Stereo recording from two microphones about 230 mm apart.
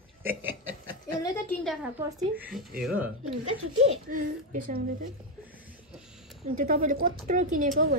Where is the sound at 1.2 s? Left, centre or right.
Centre.